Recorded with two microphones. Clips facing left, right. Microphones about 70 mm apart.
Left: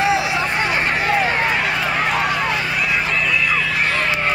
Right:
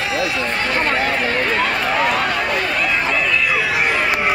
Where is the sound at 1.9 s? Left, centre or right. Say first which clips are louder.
Right 1 dB; centre.